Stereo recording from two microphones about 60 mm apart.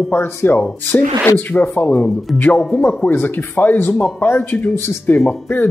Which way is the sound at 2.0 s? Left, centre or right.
Centre.